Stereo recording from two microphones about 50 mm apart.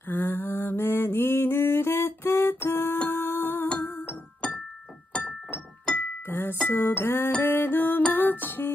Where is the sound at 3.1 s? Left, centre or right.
Left.